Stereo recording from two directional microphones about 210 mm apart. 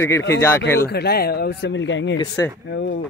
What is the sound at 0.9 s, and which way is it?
A man's voice, 50° left (ahead or behind).